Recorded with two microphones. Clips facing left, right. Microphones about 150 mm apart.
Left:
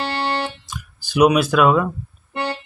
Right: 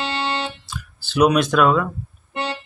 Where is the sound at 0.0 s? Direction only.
20° right (ahead or behind).